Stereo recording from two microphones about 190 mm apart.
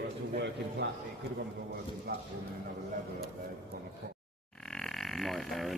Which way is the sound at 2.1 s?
55° right (ahead or behind).